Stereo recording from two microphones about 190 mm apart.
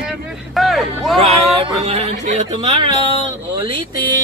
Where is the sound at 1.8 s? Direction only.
35° right (ahead or behind).